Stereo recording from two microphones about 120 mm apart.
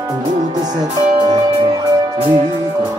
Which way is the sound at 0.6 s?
35° right (ahead or behind).